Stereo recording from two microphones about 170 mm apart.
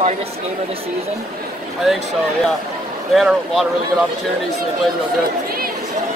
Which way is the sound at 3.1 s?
Centre (ahead or behind).